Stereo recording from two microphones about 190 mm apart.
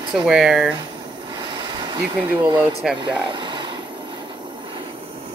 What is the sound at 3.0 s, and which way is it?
Speech, 25° right (ahead or behind).